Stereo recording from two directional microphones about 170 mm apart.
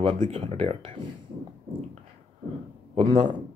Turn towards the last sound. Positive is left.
turn(degrees=-30)  # may be behind; listen again after turning